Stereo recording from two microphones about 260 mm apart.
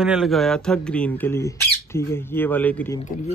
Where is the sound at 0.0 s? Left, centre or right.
Centre.